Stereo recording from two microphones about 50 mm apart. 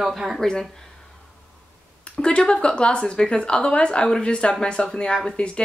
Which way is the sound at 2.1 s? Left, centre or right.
Centre.